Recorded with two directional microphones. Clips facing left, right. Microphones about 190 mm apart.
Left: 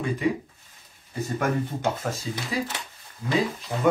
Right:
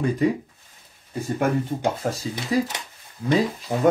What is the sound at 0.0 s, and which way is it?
Speech, 40° right (ahead or behind).